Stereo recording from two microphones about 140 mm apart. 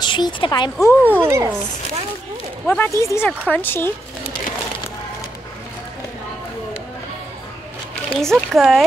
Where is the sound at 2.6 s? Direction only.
10° left (ahead or behind).